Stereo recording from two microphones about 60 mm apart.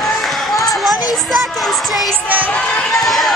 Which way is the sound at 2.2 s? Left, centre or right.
Right.